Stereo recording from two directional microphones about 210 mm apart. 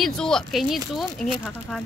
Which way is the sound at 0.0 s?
5° left (ahead or behind).